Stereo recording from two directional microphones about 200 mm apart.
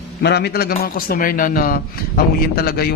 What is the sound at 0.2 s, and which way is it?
A man's voice, 55° left (ahead or behind).